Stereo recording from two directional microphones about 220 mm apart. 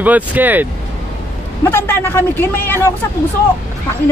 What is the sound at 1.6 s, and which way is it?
Speech, 10° left (ahead or behind).